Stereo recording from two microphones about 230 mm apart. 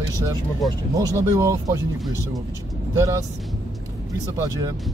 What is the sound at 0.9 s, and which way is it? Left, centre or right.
Speech, centre.